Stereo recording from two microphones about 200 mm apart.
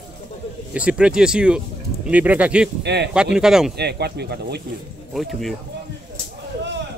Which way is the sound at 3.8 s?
55° right (ahead or behind).